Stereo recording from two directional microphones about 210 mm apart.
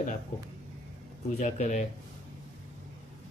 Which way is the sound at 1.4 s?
35° left (ahead or behind).